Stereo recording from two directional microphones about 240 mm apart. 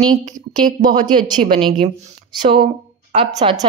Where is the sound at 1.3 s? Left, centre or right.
Right.